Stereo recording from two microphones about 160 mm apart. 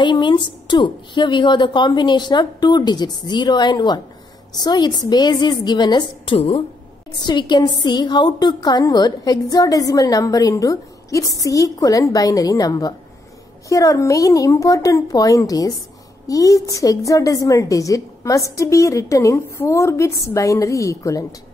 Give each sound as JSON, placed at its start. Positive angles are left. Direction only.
{"t": 0.0, "sound": "a woman's voice", "side_deg": 30}